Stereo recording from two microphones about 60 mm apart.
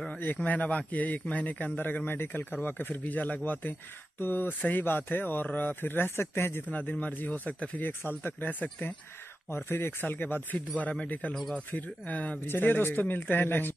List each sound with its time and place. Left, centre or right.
0.4 s speech: left
6.7 s speech: left
7.8 s speech: left
9.6 s speech: left